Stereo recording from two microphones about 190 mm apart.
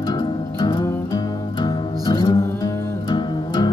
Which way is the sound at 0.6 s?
25° left (ahead or behind).